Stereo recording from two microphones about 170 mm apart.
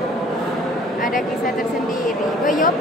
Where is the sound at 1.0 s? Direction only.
50° left (ahead or behind).